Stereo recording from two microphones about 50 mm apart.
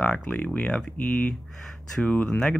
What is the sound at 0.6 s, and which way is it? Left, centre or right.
Speech, centre.